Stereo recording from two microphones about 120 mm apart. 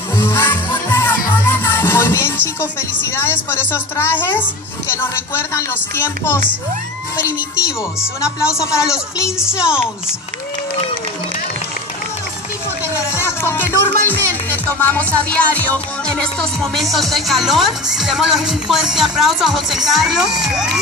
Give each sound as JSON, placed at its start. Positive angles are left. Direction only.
{"t": 0.2, "sound": "music", "side_deg": 20}
{"t": 3.2, "sound": "a woman's voice", "side_deg": 20}
{"t": 8.7, "sound": "speech", "side_deg": -5}
{"t": 9.2, "sound": "a woman's voice", "side_deg": 20}
{"t": 9.6, "sound": "speech", "side_deg": -5}
{"t": 12.9, "sound": "music", "side_deg": 20}
{"t": 16.9, "sound": "speech", "side_deg": 0}